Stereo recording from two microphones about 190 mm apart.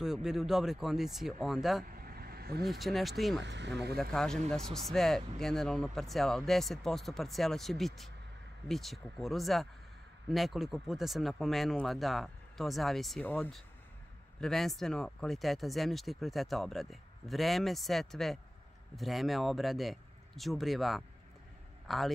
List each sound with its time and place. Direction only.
0.0 s speech: centre (ahead or behind)
1.9 s vehicle: 50° right (ahead or behind)
2.6 s speech: centre (ahead or behind)
3.4 s speech: 65° right (ahead or behind)
3.9 s a man's voice: 5° left (ahead or behind)